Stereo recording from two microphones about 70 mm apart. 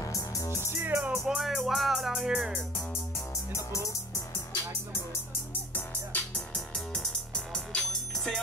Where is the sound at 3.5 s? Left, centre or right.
Left.